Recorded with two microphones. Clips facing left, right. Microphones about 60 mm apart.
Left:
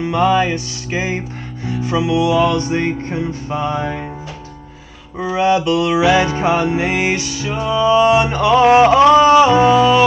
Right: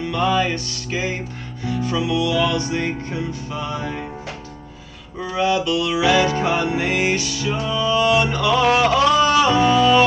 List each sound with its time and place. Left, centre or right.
0.0 s music: left
5.2 s music: left